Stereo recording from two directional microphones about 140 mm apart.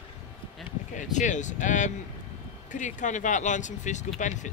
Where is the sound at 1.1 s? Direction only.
60° left (ahead or behind).